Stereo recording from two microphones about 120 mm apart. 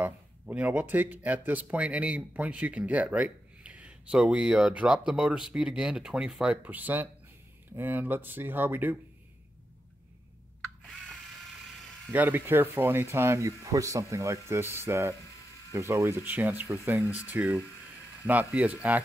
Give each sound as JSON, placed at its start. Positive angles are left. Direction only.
{"t": 0.0, "sound": "speech", "side_deg": -15}
{"t": 12.1, "sound": "speech", "side_deg": -15}
{"t": 17.0, "sound": "speech", "side_deg": 25}
{"t": 17.3, "sound": "speech", "side_deg": -10}